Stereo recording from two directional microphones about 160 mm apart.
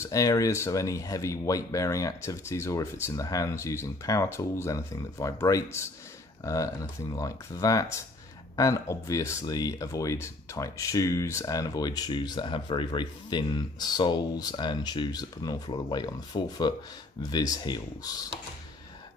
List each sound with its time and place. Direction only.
0.0 s speech: 20° left (ahead or behind)